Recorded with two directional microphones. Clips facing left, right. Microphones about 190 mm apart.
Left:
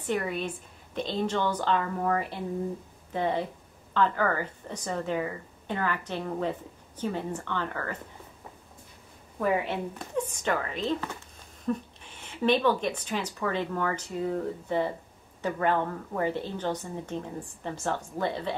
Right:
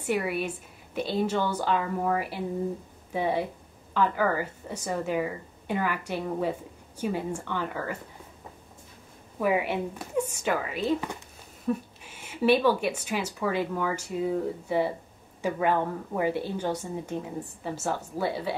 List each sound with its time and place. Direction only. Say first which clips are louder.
0.0 s speech: right 2 dB; 10° right (ahead or behind)
9.4 s speech: right 2 dB; 10° right (ahead or behind)